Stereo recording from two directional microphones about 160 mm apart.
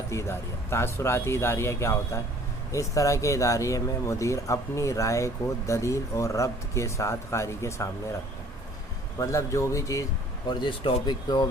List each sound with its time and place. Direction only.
0.1 s speech: 15° left (ahead or behind)
9.2 s speech: 20° left (ahead or behind)
10.6 s speech: 30° left (ahead or behind)